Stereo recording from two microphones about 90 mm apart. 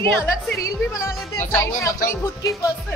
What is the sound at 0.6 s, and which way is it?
Speech, 35° left (ahead or behind).